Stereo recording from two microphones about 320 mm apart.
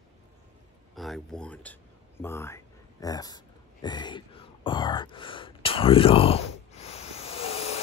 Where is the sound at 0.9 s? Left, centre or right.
Centre.